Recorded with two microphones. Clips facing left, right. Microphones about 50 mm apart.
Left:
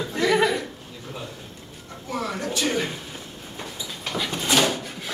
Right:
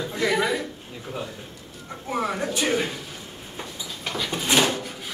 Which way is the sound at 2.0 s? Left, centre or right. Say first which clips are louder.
Right 2 dB; right.